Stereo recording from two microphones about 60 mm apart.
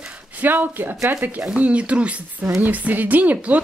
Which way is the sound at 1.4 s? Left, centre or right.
Centre.